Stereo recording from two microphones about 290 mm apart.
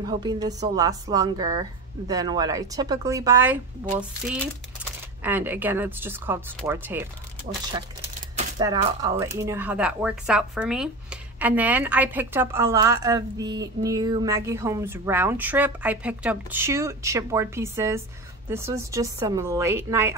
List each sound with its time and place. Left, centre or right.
0.2 s speech: centre
5.2 s speech: centre
8.4 s speech: centre